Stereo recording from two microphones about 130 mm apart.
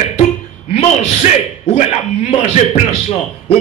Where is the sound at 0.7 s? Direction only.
55° left (ahead or behind).